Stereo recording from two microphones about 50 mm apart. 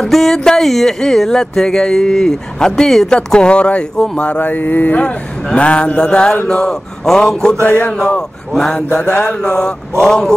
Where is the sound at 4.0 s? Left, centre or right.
Left.